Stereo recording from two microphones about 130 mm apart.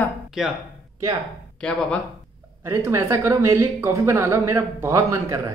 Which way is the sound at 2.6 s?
20° right (ahead or behind).